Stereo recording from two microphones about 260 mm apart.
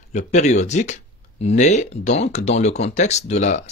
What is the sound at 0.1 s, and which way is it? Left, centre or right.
Speech, left.